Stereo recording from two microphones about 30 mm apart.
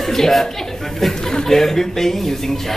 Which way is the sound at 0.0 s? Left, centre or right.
Centre.